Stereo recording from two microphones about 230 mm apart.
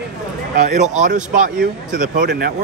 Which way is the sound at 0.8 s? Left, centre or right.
Right.